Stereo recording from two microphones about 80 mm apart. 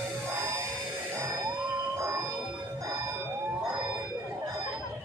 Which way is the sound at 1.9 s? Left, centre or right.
Right.